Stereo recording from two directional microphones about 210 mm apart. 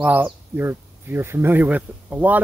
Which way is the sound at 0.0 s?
10° right (ahead or behind).